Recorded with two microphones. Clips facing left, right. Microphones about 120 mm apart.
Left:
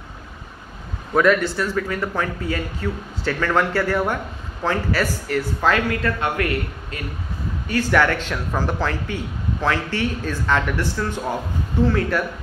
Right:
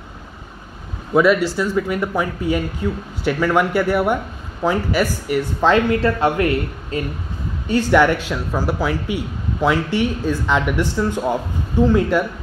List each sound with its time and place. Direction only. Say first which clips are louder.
1.1 s speech: right 2 dB; 10° right (ahead or behind)